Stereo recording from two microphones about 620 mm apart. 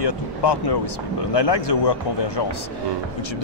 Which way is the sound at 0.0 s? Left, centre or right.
Left.